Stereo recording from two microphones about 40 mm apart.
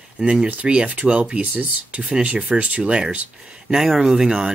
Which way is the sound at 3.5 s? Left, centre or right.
Centre.